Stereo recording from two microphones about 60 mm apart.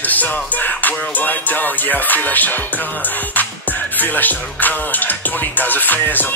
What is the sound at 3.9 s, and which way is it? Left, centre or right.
Music, left.